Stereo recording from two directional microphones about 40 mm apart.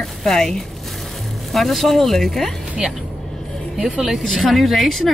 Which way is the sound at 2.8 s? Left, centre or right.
Centre.